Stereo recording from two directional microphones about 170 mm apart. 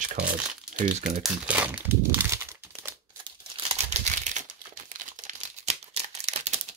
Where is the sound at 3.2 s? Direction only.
40° right (ahead or behind).